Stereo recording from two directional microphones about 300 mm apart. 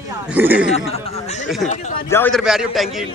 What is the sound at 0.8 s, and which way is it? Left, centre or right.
A man's voice, centre.